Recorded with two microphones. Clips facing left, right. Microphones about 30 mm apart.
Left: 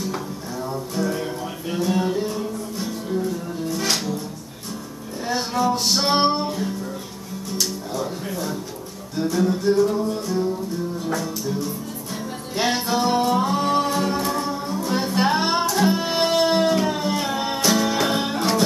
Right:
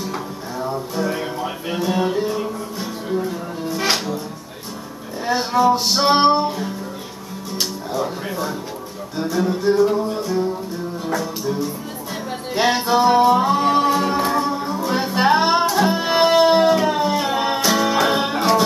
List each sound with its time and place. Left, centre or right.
0.0 s music: centre
5.2 s music: centre
7.9 s music: centre